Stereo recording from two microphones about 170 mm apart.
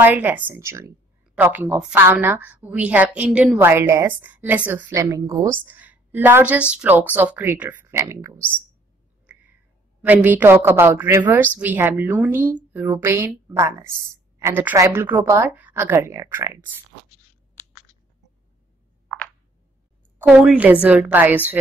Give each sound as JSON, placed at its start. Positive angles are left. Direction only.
{"t": 0.0, "sound": "a woman's voice", "side_deg": -10}
{"t": 9.2, "sound": "a sound", "side_deg": -10}
{"t": 10.0, "sound": "a woman's voice", "side_deg": -10}
{"t": 20.2, "sound": "a woman's voice", "side_deg": -5}